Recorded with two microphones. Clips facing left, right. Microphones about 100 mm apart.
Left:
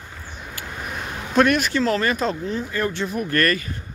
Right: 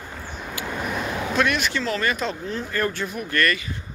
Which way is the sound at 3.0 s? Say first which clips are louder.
Left 2 dB; 40° left (ahead or behind).